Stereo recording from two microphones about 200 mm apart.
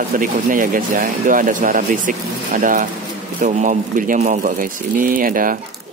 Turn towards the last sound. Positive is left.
turn(degrees=-45)  # may be behind; listen again after turning